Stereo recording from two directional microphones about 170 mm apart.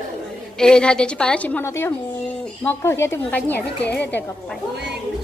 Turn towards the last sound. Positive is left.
turn(degrees=15)  # may be behind; listen again after turning